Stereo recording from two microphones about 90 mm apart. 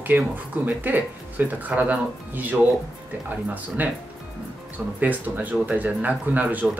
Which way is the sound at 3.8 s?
20° right (ahead or behind).